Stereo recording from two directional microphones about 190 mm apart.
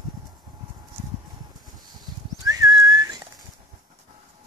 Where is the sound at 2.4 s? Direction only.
20° right (ahead or behind).